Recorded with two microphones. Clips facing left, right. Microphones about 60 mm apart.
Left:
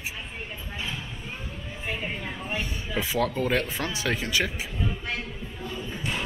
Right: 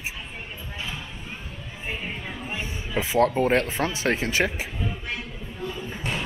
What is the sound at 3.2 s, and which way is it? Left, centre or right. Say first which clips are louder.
Speech: right 6 dB; right.